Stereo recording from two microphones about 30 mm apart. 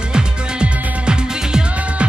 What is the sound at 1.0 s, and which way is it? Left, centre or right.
Music, right.